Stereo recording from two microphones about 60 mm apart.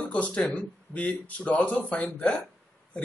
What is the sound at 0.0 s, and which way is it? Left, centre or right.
Speech, left.